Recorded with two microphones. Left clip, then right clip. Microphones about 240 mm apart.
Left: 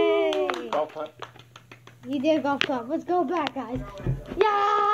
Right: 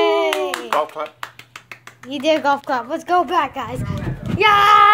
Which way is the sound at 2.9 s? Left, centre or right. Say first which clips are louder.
Right 12 dB; centre.